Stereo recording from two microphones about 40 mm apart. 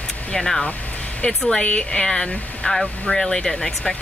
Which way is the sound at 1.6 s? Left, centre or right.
Left.